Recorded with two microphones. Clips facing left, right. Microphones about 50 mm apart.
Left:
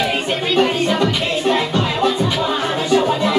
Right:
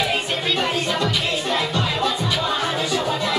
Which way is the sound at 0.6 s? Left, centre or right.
Centre.